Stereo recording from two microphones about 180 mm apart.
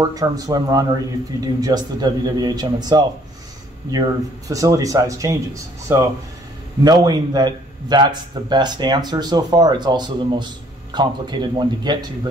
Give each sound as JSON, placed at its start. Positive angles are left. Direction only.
{"t": 0.0, "sound": "a man's voice", "side_deg": -20}
{"t": 4.5, "sound": "a man's voice", "side_deg": -20}